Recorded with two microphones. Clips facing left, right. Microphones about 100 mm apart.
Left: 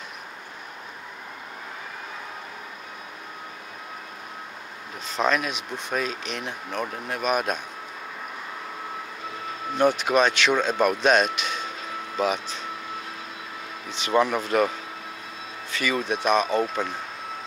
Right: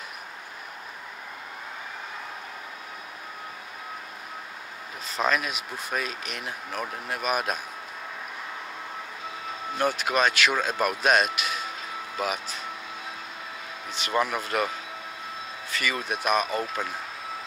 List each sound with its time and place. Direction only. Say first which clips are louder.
5.0 s speech: left 2 dB; centre (ahead or behind)
9.5 s speech: left 5 dB; centre (ahead or behind)
12.2 s vehicle: left 5 dB; 5° right (ahead or behind)
13.9 s speech: left 4 dB; centre (ahead or behind)
15.8 s speech: left 4 dB; 5° right (ahead or behind)